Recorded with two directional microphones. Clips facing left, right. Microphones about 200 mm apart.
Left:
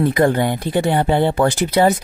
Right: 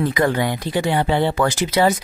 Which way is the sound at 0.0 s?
50° left (ahead or behind).